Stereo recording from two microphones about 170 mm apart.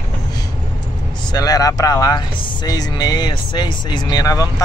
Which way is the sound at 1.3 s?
20° left (ahead or behind).